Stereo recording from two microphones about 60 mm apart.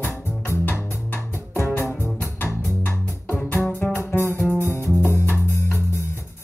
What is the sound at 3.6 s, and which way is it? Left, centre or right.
Music, left.